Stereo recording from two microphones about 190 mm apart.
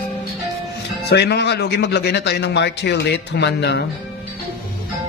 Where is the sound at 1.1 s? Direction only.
60° left (ahead or behind).